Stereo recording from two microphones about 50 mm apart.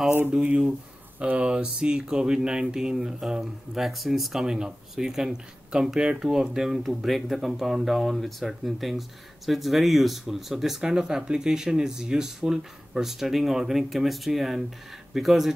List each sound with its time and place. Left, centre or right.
0.3 s speech: right; by 15.5 s centre